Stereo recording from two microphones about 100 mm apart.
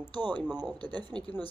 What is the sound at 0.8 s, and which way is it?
Speech, 45° right (ahead or behind).